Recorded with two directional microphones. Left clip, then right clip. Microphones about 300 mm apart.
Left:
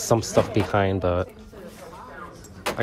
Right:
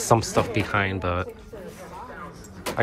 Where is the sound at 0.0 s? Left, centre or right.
Centre.